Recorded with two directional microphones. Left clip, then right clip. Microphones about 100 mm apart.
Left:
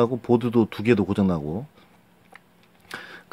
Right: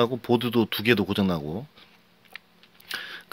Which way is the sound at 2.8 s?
40° left (ahead or behind).